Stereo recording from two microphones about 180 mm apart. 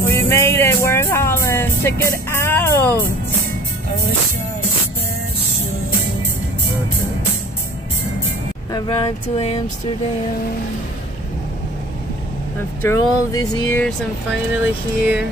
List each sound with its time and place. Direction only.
0.0 s music: 15° left (ahead or behind)
8.7 s speech: 30° left (ahead or behind)
12.8 s a sound: 20° left (ahead or behind)